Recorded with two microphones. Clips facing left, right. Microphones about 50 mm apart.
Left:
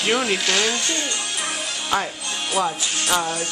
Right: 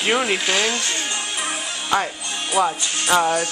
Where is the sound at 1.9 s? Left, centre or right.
Centre.